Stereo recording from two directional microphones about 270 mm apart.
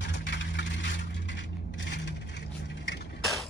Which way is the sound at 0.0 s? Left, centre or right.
Left.